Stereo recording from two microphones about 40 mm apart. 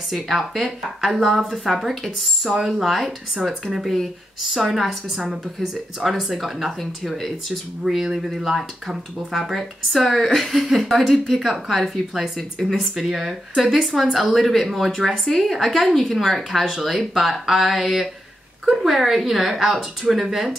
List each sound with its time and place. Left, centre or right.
0.1 s speech: centre
4.6 s speech: centre
5.2 s speech: centre
5.9 s speech: centre
11.5 s speech: centre
12.2 s speech: centre
12.8 s speech: centre